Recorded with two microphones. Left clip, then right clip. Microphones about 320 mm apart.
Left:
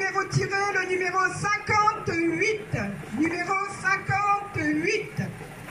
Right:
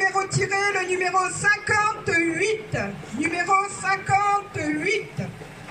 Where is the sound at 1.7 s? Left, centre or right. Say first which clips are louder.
Right 2 dB; right.